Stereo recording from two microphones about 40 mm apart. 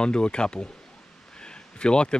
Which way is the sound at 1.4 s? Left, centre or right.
Left.